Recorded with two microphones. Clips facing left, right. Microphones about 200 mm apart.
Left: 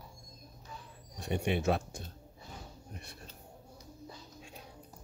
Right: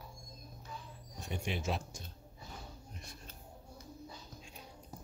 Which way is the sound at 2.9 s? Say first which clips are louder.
Left 3 dB; 65° left (ahead or behind).